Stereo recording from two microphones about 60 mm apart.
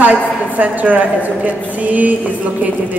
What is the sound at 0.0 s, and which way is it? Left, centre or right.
A man's voice, right.